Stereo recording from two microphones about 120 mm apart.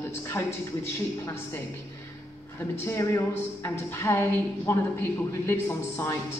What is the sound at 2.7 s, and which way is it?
A woman's voice, 20° left (ahead or behind).